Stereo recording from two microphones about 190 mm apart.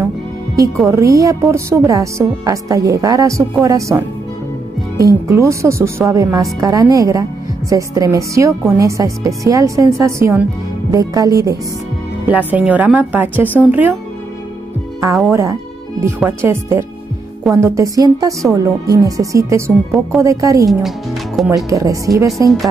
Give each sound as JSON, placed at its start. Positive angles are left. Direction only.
{"t": 0.8, "sound": "speech", "side_deg": -15}
{"t": 12.3, "sound": "speech", "side_deg": -10}
{"t": 15.0, "sound": "speech", "side_deg": -15}